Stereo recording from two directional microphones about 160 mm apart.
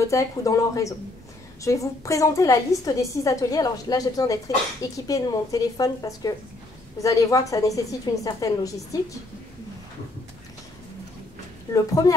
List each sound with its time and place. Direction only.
0.0 s a woman's voice: 20° left (ahead or behind)
11.7 s a woman's voice: 20° left (ahead or behind)